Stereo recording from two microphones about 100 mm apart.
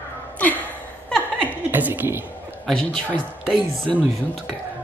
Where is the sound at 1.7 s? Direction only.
20° right (ahead or behind).